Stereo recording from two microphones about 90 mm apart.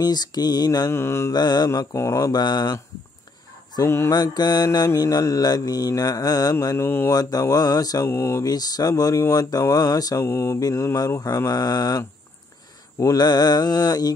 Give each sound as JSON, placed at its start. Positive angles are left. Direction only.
{"t": 0.0, "sound": "mantra", "side_deg": 50}
{"t": 1.3, "sound": "mantra", "side_deg": 50}
{"t": 2.0, "sound": "mantra", "side_deg": 35}
{"t": 3.8, "sound": "mantra", "side_deg": 30}
{"t": 4.1, "sound": "mantra", "side_deg": 50}
{"t": 6.8, "sound": "mantra", "side_deg": 25}
{"t": 7.1, "sound": "mantra", "side_deg": 45}
{"t": 8.1, "sound": "mantra", "side_deg": 30}
{"t": 8.5, "sound": "mantra", "side_deg": 45}
{"t": 10.2, "sound": "mantra", "side_deg": 30}
{"t": 13.0, "sound": "mantra", "side_deg": 50}